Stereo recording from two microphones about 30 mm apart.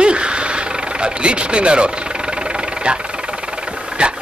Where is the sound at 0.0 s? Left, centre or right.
Right.